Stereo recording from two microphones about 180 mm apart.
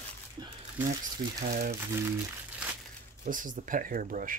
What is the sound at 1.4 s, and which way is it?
Speech, 50° right (ahead or behind).